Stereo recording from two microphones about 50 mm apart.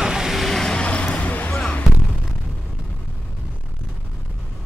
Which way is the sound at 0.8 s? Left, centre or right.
Left.